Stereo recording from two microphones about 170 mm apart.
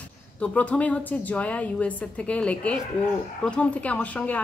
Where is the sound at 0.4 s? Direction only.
10° left (ahead or behind).